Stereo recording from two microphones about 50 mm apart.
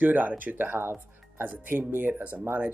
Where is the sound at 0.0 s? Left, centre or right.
Right.